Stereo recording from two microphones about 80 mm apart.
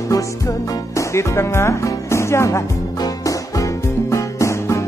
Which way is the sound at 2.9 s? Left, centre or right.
Left.